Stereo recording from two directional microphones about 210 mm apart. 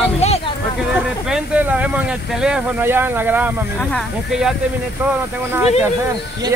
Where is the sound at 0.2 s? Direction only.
30° left (ahead or behind).